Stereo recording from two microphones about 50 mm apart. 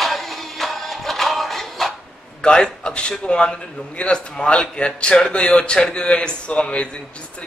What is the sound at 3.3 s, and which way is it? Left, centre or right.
A man's voice, left.